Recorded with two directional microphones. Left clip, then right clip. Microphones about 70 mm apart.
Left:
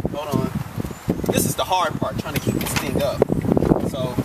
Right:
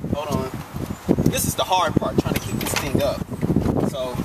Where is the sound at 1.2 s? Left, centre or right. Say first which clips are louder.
Left 1 dB; centre.